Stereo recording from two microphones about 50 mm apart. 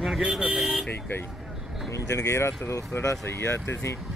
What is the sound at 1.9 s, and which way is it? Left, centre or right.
Speech, left.